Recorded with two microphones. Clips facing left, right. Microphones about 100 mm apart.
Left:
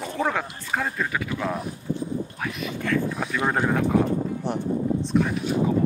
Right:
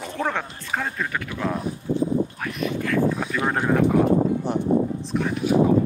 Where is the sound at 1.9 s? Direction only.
90° right.